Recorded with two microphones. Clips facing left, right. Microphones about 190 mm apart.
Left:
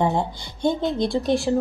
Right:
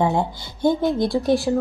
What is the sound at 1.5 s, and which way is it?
Speech, centre (ahead or behind).